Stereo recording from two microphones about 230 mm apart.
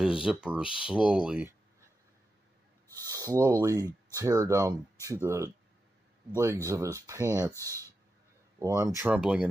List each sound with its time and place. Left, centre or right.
0.0 s speech: centre
2.9 s a sound: centre
3.6 s speech: centre